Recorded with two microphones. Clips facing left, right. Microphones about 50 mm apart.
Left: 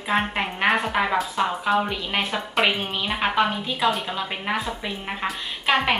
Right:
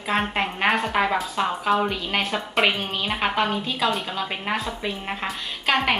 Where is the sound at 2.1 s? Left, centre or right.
Centre.